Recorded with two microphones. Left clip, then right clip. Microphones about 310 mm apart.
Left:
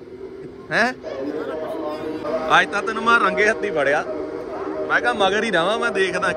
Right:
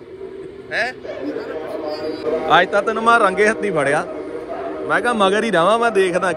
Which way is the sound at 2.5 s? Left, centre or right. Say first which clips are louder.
Right 3 dB; centre.